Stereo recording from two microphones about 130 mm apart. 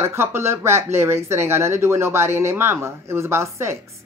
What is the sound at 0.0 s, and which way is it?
Speech, 20° right (ahead or behind).